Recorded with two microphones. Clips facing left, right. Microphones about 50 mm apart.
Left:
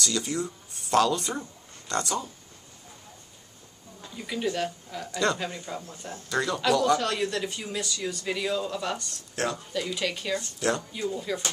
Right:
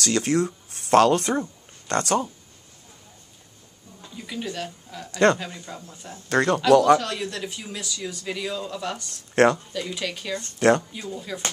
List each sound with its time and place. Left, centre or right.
0.0 s speech: right
4.0 s a sound: centre
4.6 s speech: centre
6.2 s speech: right
7.0 s speech: centre
9.3 s speech: right
9.9 s speech: centre
10.4 s speech: right
11.0 s speech: centre